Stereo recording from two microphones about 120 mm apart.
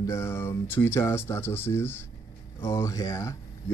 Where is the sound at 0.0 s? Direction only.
20° left (ahead or behind).